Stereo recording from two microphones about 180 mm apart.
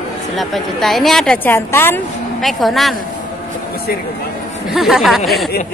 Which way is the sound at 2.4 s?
Centre (ahead or behind).